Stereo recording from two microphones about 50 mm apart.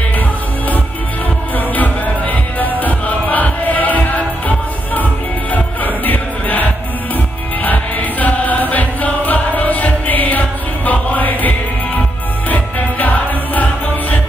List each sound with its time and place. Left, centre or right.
1.8 s music: left